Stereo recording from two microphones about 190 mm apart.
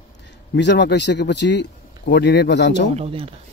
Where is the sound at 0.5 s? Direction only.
65° left (ahead or behind).